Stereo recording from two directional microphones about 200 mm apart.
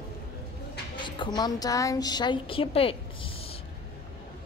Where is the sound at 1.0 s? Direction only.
25° left (ahead or behind).